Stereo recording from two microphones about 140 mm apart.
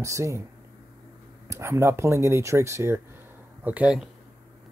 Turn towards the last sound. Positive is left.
turn(degrees=-5)  # may be behind; listen again after turning